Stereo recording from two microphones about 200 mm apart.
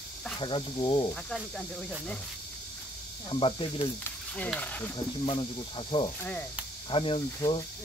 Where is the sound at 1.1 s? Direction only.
5° left (ahead or behind).